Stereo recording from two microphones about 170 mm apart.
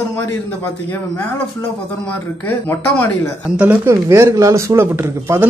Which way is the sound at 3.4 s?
10° right (ahead or behind).